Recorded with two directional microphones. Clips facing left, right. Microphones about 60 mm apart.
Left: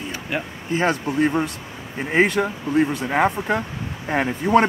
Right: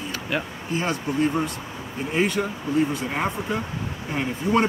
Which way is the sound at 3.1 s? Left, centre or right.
Left.